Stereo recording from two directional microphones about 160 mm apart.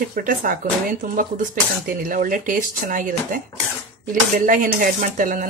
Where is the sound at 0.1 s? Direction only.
60° right (ahead or behind).